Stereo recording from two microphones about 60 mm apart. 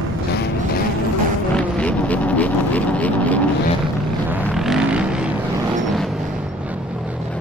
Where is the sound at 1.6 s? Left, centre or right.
Left.